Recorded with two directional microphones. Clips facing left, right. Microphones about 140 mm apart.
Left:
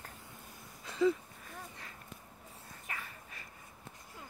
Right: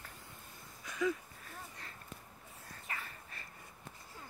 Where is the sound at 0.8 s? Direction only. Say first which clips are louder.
Left 5 dB; 30° left (ahead or behind).